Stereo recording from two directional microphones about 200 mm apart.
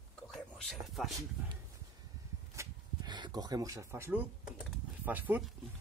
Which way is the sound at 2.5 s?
15° right (ahead or behind).